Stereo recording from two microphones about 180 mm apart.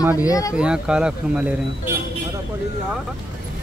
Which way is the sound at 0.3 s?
20° left (ahead or behind).